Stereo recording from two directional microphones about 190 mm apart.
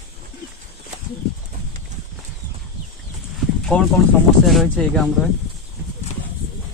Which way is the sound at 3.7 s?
5° left (ahead or behind).